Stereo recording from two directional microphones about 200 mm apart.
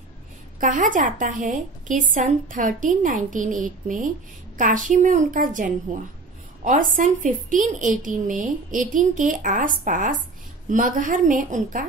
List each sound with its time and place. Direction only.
0.6 s a woman's voice: 40° right (ahead or behind)